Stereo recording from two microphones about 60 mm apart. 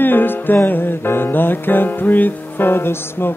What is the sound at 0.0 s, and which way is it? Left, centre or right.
Music, left.